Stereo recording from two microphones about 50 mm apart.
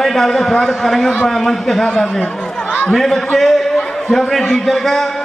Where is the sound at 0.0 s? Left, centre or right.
Centre.